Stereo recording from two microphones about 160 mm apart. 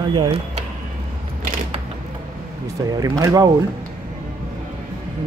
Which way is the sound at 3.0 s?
25° right (ahead or behind).